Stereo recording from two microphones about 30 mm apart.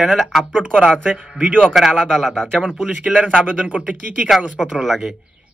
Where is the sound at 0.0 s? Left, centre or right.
Centre.